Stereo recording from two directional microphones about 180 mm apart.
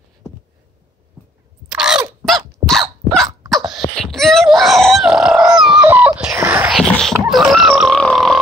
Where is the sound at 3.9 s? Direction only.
Centre (ahead or behind).